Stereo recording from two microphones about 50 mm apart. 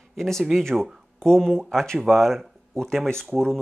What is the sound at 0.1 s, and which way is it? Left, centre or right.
Speech, centre.